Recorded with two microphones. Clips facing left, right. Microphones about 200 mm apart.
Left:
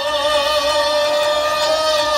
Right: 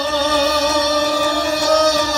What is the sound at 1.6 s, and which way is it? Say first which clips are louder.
Vehicle: right 4 dB; 45° right (ahead or behind).